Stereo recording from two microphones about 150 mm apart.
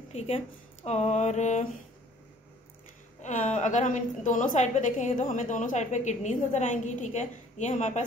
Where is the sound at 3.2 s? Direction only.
55° left (ahead or behind).